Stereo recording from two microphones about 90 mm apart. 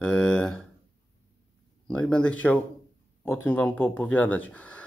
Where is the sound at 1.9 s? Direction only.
10° left (ahead or behind).